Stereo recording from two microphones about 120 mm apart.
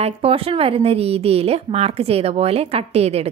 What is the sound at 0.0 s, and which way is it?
A woman's voice, 55° right (ahead or behind).